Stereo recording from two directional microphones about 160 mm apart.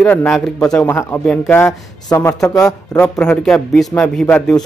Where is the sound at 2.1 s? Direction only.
20° left (ahead or behind).